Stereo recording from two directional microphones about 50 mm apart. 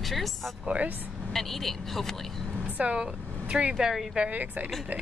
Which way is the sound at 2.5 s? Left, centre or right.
Right.